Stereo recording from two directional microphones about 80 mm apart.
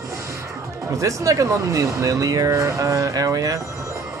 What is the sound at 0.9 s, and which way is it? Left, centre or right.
Speech, right.